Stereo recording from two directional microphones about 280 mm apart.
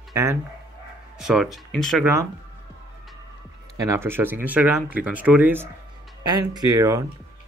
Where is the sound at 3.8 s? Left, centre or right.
Centre.